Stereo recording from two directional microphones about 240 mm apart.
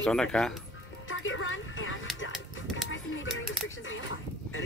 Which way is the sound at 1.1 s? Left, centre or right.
Left.